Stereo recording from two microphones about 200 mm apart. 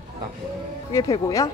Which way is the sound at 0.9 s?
20° left (ahead or behind).